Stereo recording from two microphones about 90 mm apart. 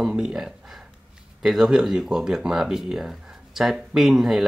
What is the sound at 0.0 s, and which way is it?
Speech, 5° right (ahead or behind).